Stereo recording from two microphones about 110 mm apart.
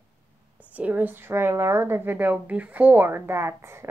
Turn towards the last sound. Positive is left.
turn(degrees=-25)  # may be behind; listen again after turning